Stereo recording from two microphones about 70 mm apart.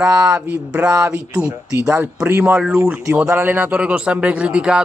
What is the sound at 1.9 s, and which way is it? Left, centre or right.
A man's voice, right.